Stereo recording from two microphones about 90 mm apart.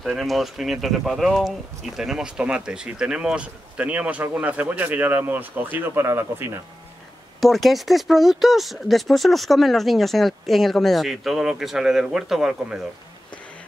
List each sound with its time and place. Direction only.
0.0 s speech: centre (ahead or behind); by 6.5 s 25° right (ahead or behind)
7.3 s speech: centre (ahead or behind)